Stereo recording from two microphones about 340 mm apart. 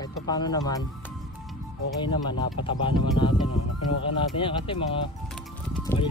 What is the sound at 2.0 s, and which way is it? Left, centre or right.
Speech, centre.